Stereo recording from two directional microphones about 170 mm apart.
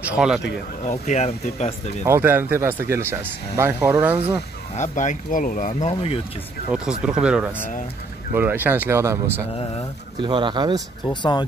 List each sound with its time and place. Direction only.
0.0 s speech: 5° right (ahead or behind)
0.8 s speech: 45° left (ahead or behind)
2.0 s speech: 15° right (ahead or behind)
4.7 s speech: 45° left (ahead or behind)
6.7 s speech: 5° right (ahead or behind)
10.2 s speech: 30° right (ahead or behind)
11.1 s speech: 25° left (ahead or behind)